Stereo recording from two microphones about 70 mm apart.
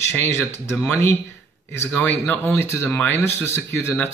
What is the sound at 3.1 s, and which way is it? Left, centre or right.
Speech, left.